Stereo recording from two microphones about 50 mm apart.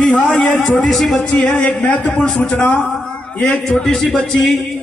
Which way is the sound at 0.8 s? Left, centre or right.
Centre.